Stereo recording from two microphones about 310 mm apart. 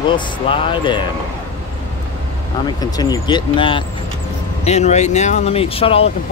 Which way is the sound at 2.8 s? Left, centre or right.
Centre.